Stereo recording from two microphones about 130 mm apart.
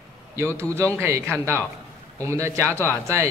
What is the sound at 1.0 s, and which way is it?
A man's voice, 20° right (ahead or behind).